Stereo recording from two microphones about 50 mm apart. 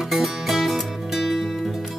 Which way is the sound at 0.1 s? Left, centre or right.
Centre.